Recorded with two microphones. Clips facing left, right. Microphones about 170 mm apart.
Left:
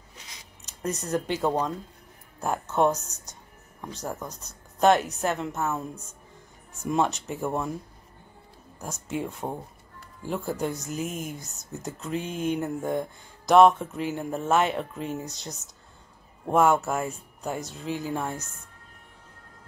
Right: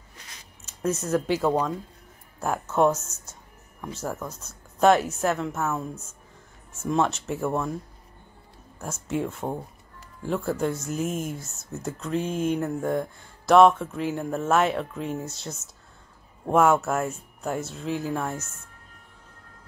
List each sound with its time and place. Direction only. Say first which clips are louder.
0.7 s speech: right 4 dB; 5° right (ahead or behind)
2.7 s speech: right 2 dB; 5° right (ahead or behind)
6.7 s speech: right 1 dB; centre (ahead or behind)
8.8 s speech: right 3 dB; centre (ahead or behind)